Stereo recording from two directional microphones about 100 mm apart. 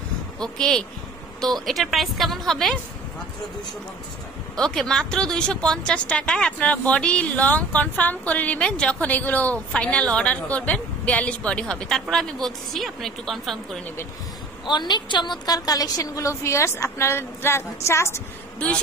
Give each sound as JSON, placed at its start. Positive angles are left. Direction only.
{"t": 0.4, "sound": "a woman's voice", "side_deg": 5}
{"t": 4.6, "sound": "a woman's voice", "side_deg": 5}
{"t": 14.7, "sound": "a woman's voice", "side_deg": 50}